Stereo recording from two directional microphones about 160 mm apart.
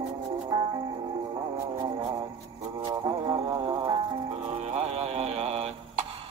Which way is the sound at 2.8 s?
25° right (ahead or behind).